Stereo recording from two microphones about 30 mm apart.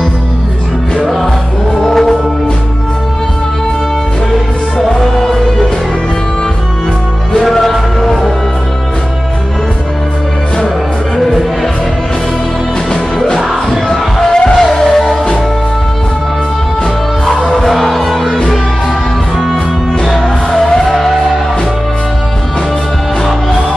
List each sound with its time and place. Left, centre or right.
1.0 s music: centre
4.7 s music: centre
7.3 s music: centre
13.4 s music: centre
13.8 s a sound: centre
14.6 s music: centre
17.6 s music: centre
20.1 s music: centre
20.9 s music: centre